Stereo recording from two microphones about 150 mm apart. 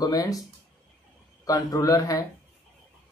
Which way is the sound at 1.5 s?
25° left (ahead or behind).